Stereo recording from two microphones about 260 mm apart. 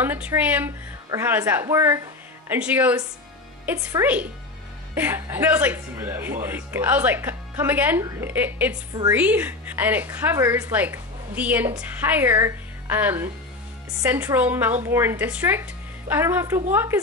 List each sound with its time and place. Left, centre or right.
0.0 s speech: centre